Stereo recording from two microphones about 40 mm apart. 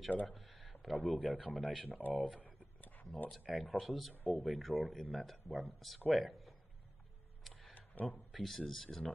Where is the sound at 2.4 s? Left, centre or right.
Left.